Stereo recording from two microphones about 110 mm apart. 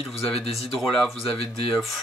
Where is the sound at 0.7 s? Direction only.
Centre (ahead or behind).